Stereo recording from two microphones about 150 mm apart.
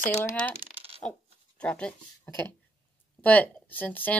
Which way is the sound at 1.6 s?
5° left (ahead or behind).